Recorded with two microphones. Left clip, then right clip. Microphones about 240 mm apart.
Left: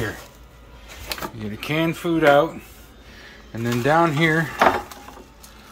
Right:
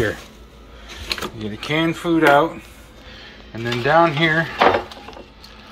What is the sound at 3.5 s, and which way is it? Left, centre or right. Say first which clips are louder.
Speech: right 3 dB; left.